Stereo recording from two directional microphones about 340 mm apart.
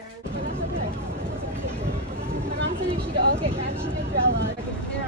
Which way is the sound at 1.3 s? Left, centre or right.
Centre.